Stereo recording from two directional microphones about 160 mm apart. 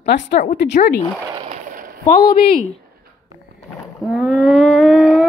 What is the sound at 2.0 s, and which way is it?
Speech, 55° left (ahead or behind).